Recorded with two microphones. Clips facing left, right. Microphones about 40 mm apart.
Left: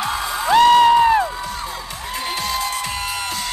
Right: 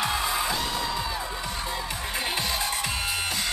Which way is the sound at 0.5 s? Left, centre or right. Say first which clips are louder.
Left 17 dB; left.